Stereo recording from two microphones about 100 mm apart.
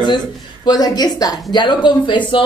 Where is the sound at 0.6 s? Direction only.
40° left (ahead or behind).